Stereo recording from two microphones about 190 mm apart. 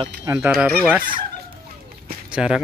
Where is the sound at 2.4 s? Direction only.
5° right (ahead or behind).